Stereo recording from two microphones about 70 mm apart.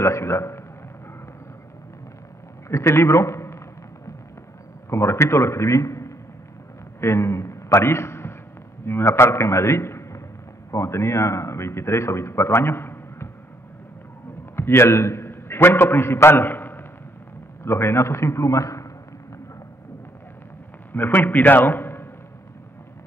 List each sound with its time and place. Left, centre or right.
0.0 s a man's voice: left
2.7 s a man's voice: left
4.8 s a man's voice: left
14.5 s a man's voice: left
20.9 s a man's voice: left